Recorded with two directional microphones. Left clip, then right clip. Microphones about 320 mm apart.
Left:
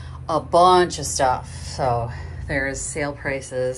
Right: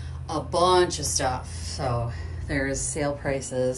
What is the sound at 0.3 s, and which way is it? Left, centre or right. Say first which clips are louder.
Speech: left 7 dB; centre.